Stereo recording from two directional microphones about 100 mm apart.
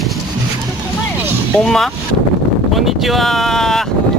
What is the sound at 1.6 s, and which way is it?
Speech, 5° left (ahead or behind).